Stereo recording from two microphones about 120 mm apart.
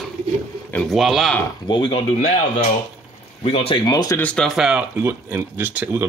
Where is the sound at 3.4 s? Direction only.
50° left (ahead or behind); by 4.1 s 35° left (ahead or behind).